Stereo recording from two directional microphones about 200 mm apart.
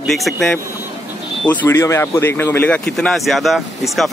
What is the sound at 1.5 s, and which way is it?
Speech, 10° left (ahead or behind).